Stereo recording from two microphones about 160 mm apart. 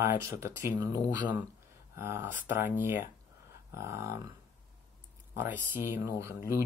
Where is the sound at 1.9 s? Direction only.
15° right (ahead or behind).